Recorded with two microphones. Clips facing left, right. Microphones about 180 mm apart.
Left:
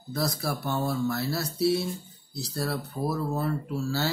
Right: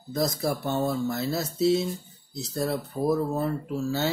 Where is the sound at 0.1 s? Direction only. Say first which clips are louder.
Right 3 dB; 20° right (ahead or behind).